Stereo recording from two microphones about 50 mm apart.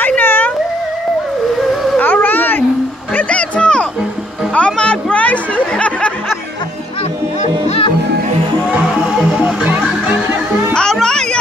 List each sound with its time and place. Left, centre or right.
0.0 s a sound: left
2.0 s a sound: left
3.3 s music: left
4.6 s chatter: left
9.0 s music: centre
10.7 s music: centre